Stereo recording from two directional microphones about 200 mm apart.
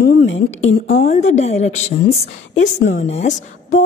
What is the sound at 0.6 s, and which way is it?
Speech, 70° left (ahead or behind).